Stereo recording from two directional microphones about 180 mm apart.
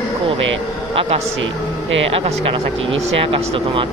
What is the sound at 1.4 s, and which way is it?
Speech, 90° right.